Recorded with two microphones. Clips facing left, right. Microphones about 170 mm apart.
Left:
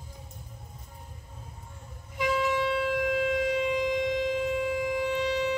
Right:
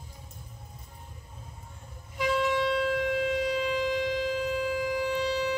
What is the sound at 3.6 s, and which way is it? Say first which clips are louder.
Shofar: left 1 dB; 15° left (ahead or behind).